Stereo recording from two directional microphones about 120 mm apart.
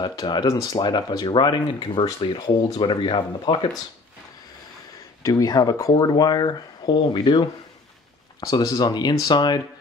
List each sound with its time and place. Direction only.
0.0 s speech: 35° left (ahead or behind)
5.2 s speech: 30° left (ahead or behind)